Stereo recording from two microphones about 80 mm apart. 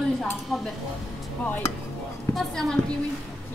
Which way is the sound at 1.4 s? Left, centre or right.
Centre.